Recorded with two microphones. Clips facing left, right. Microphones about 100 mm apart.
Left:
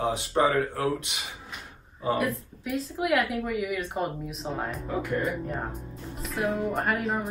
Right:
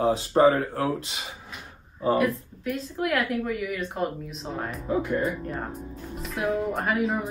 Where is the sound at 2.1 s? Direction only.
Centre (ahead or behind).